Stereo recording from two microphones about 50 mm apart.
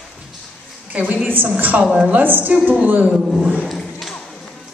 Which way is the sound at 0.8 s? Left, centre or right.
Right.